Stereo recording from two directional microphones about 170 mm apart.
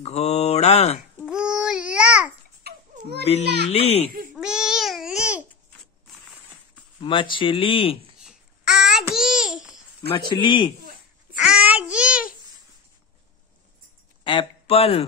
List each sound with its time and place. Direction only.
0.0 s speech: 40° left (ahead or behind)
1.2 s babbling: 5° right (ahead or behind)
3.6 s speech: 35° left (ahead or behind)
4.4 s babbling: 5° right (ahead or behind)
7.0 s speech: 30° left (ahead or behind)
8.2 s babbling: 5° right (ahead or behind)
10.1 s a man's voice: 25° left (ahead or behind)
11.3 s child singing: 5° right (ahead or behind)
14.2 s a sound: 30° left (ahead or behind)